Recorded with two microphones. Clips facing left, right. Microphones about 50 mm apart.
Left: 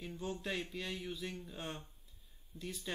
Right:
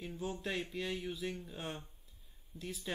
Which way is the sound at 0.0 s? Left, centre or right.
Centre.